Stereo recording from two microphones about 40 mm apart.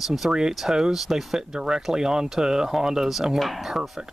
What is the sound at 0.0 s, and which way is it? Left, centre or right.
Speech, centre.